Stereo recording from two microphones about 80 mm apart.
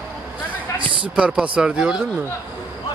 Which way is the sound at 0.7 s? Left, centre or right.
Right.